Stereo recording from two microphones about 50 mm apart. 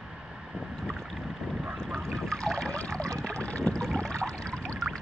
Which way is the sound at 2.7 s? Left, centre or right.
Centre.